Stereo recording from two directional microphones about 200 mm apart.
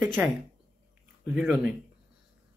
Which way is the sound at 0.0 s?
Centre (ahead or behind).